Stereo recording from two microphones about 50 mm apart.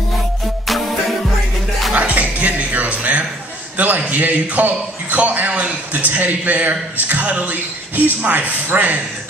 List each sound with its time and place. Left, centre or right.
0.7 s music: centre
2.0 s music: right
3.7 s a man's voice: right